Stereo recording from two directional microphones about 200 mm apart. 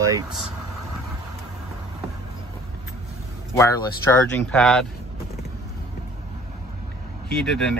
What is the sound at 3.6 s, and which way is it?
Speech, 15° left (ahead or behind).